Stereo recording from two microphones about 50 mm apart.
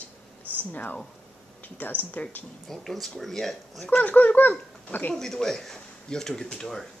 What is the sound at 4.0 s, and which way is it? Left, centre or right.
A woman's voice, left.